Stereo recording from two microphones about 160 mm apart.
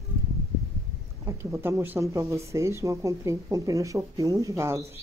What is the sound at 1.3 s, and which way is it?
Speech, 20° right (ahead or behind).